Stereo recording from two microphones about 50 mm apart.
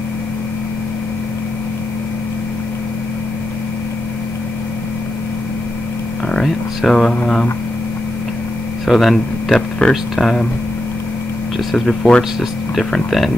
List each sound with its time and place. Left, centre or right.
6.2 s a sound: centre
6.8 s speech: centre
8.8 s speech: centre
9.8 s speech: left
10.1 s speech: centre
11.7 s speech: centre
12.2 s speech: centre